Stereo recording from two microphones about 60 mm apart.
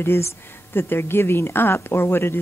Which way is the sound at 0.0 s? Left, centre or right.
Left.